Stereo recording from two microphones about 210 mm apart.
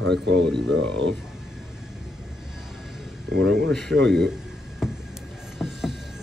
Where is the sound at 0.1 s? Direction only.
55° right (ahead or behind).